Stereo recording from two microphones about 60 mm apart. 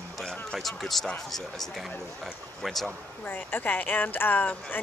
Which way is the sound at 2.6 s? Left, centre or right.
Centre.